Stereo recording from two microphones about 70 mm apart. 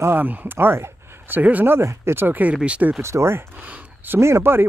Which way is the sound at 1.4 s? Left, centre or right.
Right.